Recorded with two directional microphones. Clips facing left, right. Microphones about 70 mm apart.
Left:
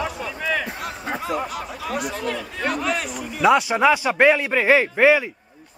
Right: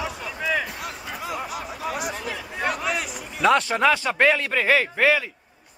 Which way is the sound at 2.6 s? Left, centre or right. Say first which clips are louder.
Left 2 dB; centre.